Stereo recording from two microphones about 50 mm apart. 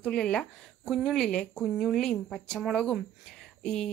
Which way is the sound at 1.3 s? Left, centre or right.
Left.